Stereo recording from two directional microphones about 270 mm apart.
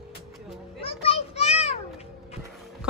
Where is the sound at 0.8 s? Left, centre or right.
Left.